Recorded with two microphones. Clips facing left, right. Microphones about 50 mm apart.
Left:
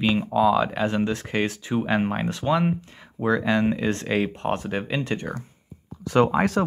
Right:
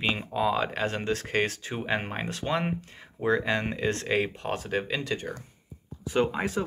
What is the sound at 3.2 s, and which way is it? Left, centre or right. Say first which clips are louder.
Speech: left 4 dB; right.